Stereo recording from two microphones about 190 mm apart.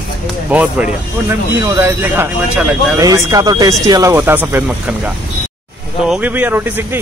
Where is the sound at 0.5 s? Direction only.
10° right (ahead or behind).